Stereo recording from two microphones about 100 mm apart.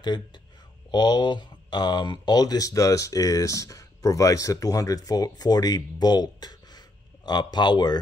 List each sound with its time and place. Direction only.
0.0 s speech: 45° left (ahead or behind)